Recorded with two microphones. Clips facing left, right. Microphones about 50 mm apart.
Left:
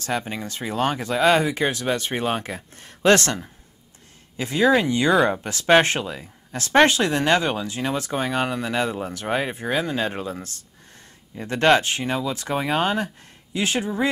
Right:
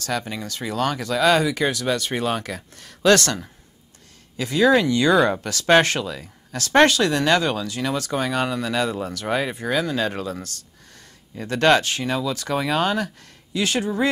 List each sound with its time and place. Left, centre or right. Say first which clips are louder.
0.0 s speech: even; left
4.4 s speech: right 1 dB; left
5.1 s speech: even; centre
5.4 s speech: even; left